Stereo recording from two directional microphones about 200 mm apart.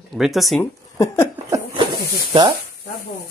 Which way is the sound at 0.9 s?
15° left (ahead or behind).